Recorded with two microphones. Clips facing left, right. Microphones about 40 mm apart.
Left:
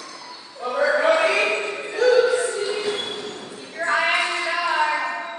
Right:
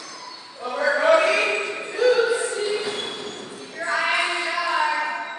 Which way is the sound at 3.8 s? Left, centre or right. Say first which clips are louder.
Left 3 dB; left.